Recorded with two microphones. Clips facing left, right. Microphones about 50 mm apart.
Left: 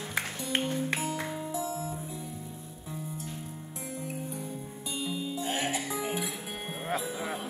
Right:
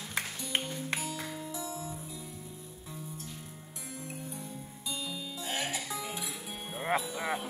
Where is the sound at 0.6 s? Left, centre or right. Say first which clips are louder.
Left 6 dB; left.